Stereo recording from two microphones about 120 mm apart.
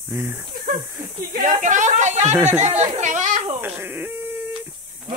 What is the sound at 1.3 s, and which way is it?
Speech, 85° right.